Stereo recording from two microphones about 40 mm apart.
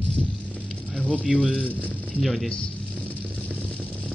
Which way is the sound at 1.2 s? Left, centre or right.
Right.